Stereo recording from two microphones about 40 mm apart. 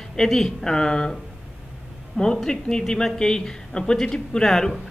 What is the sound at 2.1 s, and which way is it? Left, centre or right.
A man's voice, centre.